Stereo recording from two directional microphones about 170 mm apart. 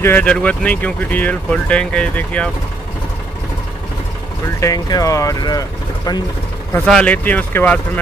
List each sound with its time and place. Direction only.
0.0 s speech: 10° left (ahead or behind)
4.6 s speech: 20° left (ahead or behind)
6.9 s speech: 5° left (ahead or behind)